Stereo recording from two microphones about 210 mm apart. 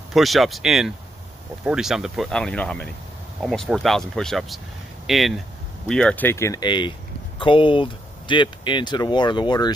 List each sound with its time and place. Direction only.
0.1 s speech: centre (ahead or behind); by 9.7 s 20° left (ahead or behind)